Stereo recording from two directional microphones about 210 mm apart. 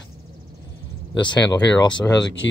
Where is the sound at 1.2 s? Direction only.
20° left (ahead or behind).